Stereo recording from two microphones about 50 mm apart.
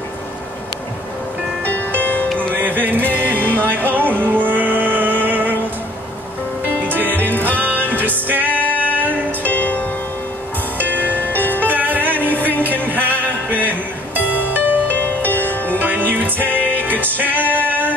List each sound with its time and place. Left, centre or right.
2.0 s music: left
2.5 s music: right
6.9 s music: right
9.4 s music: left
11.1 s music: left
11.6 s music: right
15.0 s music: left
15.8 s music: right
16.4 s music: left
16.7 s music: right